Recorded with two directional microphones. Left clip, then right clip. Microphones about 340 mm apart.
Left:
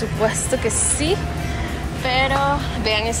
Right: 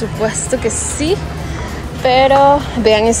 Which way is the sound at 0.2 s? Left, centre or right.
Centre.